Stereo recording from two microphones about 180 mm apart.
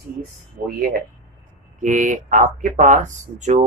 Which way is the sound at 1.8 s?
45° right (ahead or behind).